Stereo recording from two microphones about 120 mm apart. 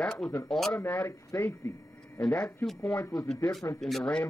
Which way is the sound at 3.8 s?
5° left (ahead or behind).